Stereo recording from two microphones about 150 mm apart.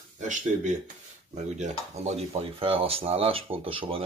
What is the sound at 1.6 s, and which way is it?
Speech, 45° right (ahead or behind).